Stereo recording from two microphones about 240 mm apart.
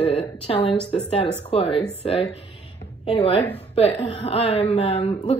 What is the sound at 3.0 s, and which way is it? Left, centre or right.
Speech, left.